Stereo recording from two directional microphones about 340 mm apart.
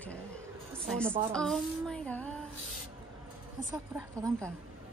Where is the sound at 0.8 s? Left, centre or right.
Centre.